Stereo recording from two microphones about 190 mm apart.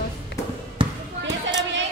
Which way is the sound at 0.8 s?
30° right (ahead or behind).